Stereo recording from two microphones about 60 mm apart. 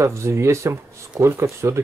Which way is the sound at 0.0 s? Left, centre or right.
Right.